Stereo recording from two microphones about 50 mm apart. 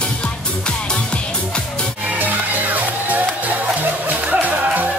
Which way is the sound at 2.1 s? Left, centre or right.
Right.